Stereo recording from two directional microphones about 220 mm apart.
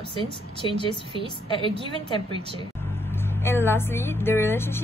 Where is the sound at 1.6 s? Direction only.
25° right (ahead or behind).